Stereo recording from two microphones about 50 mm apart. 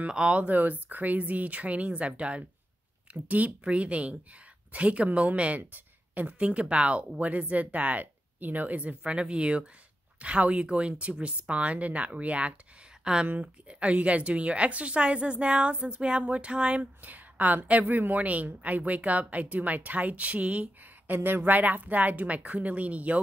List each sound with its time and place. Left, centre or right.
0.1 s speech: right
0.6 s speech: right
21.1 s speech: right